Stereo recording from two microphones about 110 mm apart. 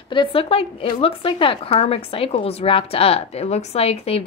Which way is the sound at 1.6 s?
65° left (ahead or behind).